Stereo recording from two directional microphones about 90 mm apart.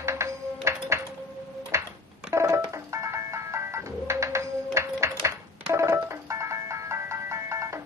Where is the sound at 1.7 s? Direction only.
35° right (ahead or behind).